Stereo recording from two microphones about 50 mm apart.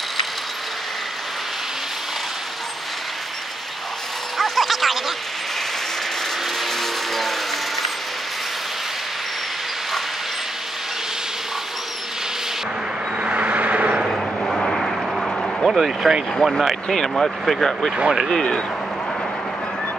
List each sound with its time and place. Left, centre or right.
4.4 s a sound: centre
6.6 s vehicle: centre
13.2 s vehicle: right
13.9 s vehicle: centre
14.4 s artillery fire: centre
15.6 s speech: centre
16.3 s speech: centre